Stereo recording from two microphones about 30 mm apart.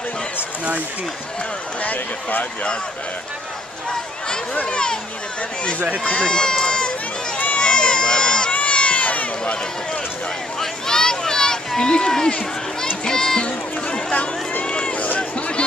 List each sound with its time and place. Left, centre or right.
1.8 s speech: left
4.6 s speech: left
6.2 s speech: left
7.5 s run: left
7.8 s a sound: left
8.5 s cat: left
10.6 s a sound: left
13.0 s speech: left
13.4 s speech: left
15.1 s a sound: left